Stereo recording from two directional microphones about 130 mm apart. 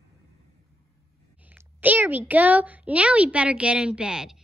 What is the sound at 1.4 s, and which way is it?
A child's voice, 10° right (ahead or behind).